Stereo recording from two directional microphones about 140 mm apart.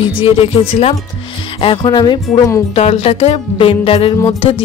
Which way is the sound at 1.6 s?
35° left (ahead or behind).